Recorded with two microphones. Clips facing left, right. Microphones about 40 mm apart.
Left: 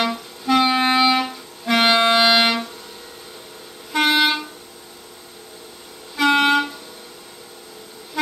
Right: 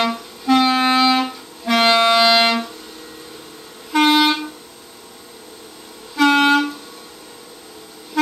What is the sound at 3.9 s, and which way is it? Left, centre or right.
Vehicle, centre.